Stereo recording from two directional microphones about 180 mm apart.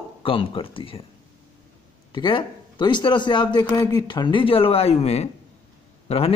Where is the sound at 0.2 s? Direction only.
30° left (ahead or behind).